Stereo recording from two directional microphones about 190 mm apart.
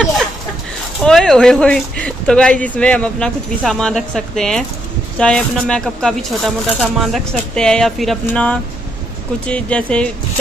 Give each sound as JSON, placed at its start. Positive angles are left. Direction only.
{"t": 1.0, "sound": "speech", "side_deg": 5}